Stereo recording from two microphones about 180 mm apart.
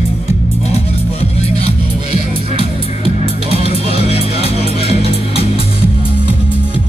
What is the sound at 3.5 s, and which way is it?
Music, 35° left (ahead or behind).